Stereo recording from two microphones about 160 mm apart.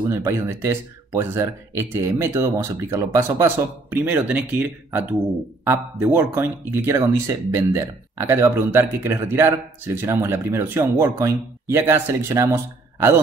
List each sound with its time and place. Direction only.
0.0 s speech: 15° right (ahead or behind)